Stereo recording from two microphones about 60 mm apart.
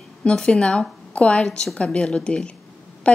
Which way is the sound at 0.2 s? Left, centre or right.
Centre.